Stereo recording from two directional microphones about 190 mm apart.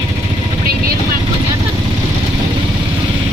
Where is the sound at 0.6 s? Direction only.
50° right (ahead or behind).